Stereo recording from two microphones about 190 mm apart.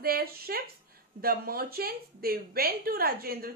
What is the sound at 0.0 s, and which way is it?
A woman's voice, 55° right (ahead or behind).